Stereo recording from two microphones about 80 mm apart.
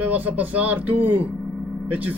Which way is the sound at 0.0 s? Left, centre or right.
Right.